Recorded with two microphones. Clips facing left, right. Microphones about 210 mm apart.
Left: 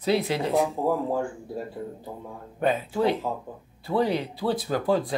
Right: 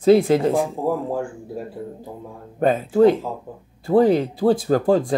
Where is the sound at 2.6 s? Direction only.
45° right (ahead or behind).